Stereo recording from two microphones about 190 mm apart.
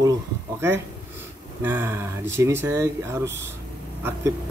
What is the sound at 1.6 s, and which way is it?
Speech, 10° right (ahead or behind).